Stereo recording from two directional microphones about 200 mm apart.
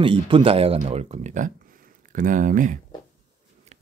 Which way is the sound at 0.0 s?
25° right (ahead or behind).